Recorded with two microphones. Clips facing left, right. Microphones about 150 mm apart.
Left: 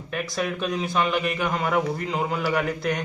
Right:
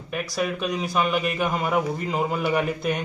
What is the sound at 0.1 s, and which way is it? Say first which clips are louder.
Speech: right 1 dB; 5° right (ahead or behind).